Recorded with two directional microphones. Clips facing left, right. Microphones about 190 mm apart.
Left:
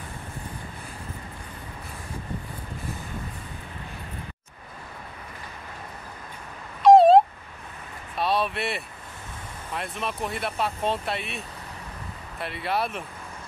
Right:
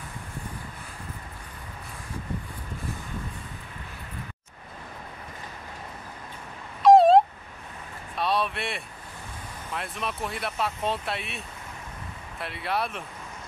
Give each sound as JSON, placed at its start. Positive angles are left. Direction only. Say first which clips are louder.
{"t": 6.8, "sound": "dog", "louder": "left 2 dB", "side_deg": 0}
{"t": 8.2, "sound": "a sound", "louder": "left 2 dB", "side_deg": 0}
{"t": 9.8, "sound": "speech", "louder": "left 2 dB", "side_deg": 0}